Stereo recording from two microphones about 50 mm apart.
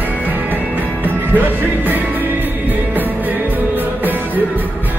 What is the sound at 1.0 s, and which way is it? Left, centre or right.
Music, right.